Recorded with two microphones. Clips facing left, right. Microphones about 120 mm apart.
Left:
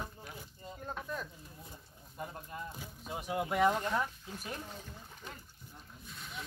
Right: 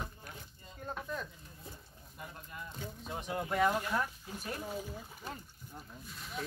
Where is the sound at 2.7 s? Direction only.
5° left (ahead or behind).